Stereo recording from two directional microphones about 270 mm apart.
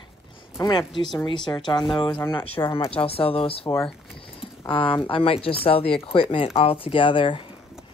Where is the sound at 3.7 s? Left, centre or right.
Centre.